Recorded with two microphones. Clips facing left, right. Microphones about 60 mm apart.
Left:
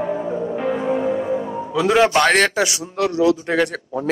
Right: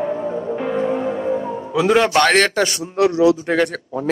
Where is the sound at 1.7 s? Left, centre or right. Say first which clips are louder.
Even; centre.